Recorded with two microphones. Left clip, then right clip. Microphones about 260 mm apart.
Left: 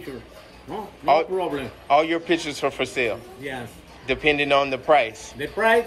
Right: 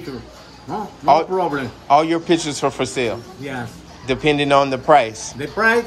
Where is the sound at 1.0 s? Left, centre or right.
Centre.